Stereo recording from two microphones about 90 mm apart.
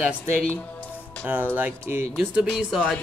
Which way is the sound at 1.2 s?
15° right (ahead or behind).